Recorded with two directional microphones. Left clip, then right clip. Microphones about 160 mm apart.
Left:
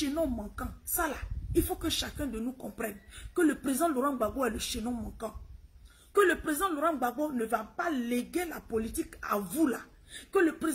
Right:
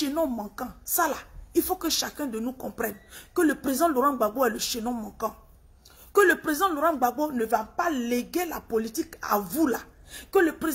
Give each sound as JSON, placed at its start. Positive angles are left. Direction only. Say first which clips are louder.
{"t": 0.0, "sound": "speech", "louder": "right 5 dB", "side_deg": 20}
{"t": 6.1, "sound": "speech", "louder": "right 5 dB", "side_deg": 20}